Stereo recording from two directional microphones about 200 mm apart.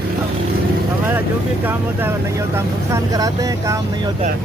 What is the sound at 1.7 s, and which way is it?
Speech, 10° right (ahead or behind).